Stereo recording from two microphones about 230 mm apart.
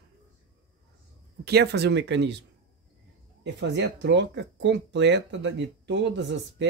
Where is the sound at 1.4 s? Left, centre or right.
Right.